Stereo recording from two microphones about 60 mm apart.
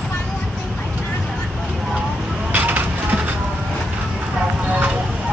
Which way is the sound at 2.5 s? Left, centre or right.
Right.